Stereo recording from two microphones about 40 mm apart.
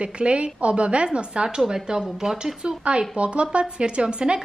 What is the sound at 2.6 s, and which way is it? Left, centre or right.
Speech, right.